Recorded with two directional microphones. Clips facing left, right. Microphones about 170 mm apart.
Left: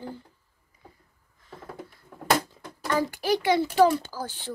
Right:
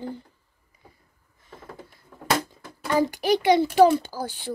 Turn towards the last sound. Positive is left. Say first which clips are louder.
# right 3 dB
turn(degrees=-15)  # may be behind; listen again after turning